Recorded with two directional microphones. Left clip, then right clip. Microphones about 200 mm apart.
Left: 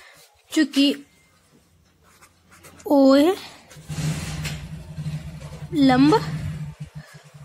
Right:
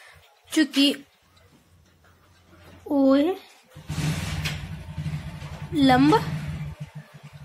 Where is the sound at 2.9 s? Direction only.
40° left (ahead or behind).